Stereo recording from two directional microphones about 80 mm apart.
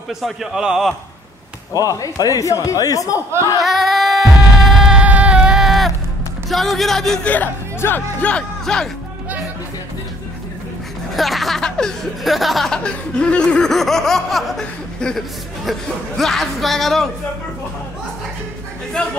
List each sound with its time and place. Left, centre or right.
0.2 s music: centre
1.7 s a man's voice: left
3.6 s a sound: centre
5.0 s a sound: centre
6.5 s music: centre
7.2 s speech: left
11.1 s music: centre
19.0 s speech: centre